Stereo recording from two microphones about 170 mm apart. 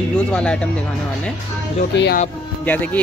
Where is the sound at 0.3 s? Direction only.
5° left (ahead or behind).